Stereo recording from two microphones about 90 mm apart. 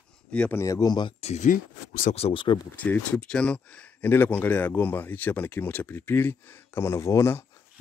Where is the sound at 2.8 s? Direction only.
15° left (ahead or behind).